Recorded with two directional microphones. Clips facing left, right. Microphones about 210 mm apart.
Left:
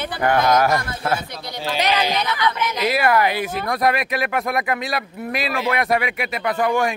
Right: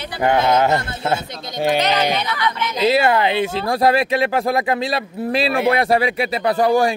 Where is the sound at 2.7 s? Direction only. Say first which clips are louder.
Right 4 dB; 25° right (ahead or behind).